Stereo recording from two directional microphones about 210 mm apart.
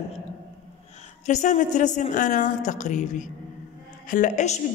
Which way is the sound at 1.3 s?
35° left (ahead or behind).